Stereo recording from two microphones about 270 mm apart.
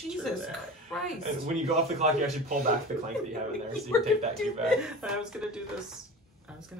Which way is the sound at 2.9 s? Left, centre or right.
Right.